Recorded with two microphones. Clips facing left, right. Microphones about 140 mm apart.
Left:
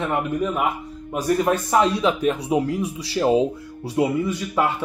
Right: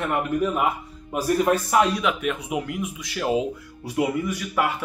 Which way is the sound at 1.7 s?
25° left (ahead or behind).